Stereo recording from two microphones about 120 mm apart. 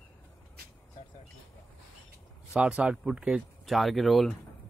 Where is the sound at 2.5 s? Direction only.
10° right (ahead or behind).